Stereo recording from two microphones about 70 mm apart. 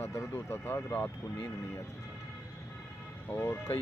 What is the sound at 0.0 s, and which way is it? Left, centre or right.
Speech, left.